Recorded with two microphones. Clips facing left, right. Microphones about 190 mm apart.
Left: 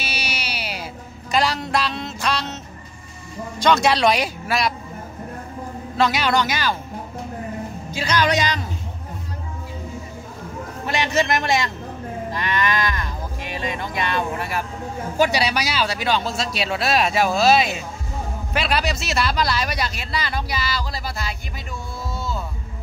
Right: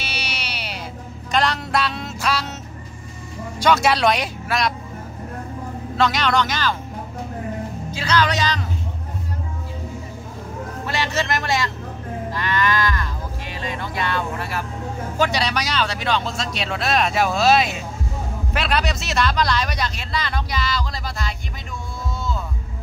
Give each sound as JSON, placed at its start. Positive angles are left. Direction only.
{"t": 0.0, "sound": "music", "side_deg": 5}
{"t": 3.5, "sound": "speech", "side_deg": -5}
{"t": 5.9, "sound": "speech", "side_deg": 5}
{"t": 7.9, "sound": "speech", "side_deg": 15}
{"t": 10.9, "sound": "speech", "side_deg": 15}
{"t": 12.3, "sound": "cattle", "side_deg": 20}
{"t": 15.1, "sound": "speech", "side_deg": 10}